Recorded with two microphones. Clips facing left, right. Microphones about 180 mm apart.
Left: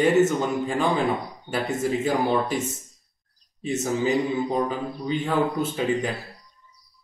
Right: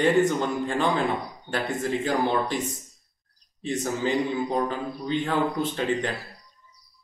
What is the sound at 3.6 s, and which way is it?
A man's voice, 5° left (ahead or behind).